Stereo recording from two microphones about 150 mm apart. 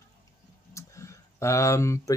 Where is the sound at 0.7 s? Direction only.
20° left (ahead or behind).